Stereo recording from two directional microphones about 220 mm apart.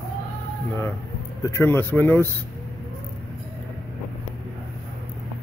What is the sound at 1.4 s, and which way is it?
Speech, 10° left (ahead or behind).